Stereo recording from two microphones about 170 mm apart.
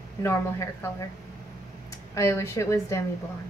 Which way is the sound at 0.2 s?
15° left (ahead or behind).